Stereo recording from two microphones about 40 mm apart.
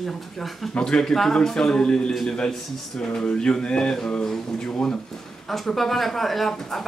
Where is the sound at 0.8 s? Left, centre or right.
Centre.